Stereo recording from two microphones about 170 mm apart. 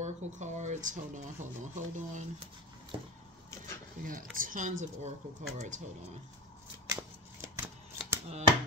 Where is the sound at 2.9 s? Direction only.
30° right (ahead or behind).